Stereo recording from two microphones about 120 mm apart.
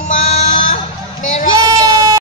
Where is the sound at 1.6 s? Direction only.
30° right (ahead or behind).